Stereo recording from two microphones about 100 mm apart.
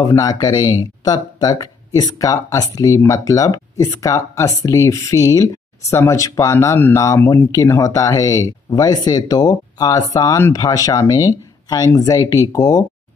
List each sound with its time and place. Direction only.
0.1 s speech: 35° left (ahead or behind)